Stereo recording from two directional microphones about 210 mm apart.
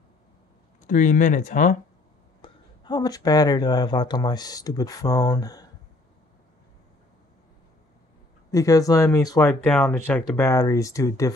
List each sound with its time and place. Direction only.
0.8 s speech: 40° left (ahead or behind)
2.4 s speech: 20° left (ahead or behind)
8.5 s speech: 15° left (ahead or behind)
9.5 s speech: 5° left (ahead or behind)